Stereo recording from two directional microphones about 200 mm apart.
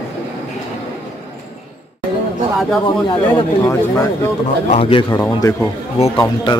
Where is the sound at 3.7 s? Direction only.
15° left (ahead or behind).